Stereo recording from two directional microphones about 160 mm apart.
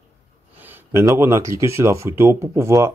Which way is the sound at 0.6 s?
10° right (ahead or behind).